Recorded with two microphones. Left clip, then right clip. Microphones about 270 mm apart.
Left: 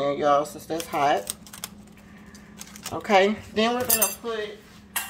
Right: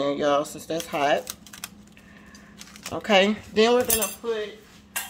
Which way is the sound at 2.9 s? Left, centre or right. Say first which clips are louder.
Even; right.